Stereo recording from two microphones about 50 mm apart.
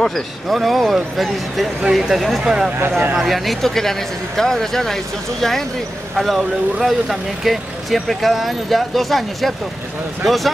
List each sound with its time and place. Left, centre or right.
0.0 s speech: centre
2.4 s speech: centre
3.2 s speech: centre